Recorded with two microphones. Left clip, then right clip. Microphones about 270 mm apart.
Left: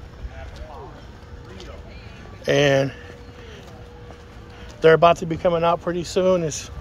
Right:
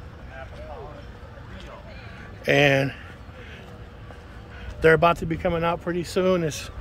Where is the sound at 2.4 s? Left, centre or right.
Centre.